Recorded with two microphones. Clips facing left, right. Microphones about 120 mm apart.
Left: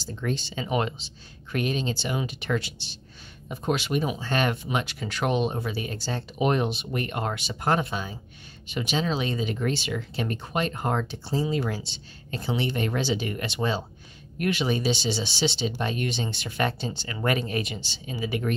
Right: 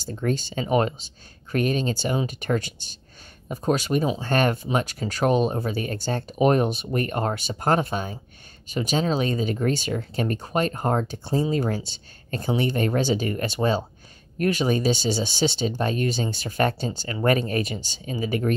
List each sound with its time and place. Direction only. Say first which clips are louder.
0.0 s speech: right 4 dB; 45° right (ahead or behind)
4.2 s speech: right 4 dB; 45° right (ahead or behind)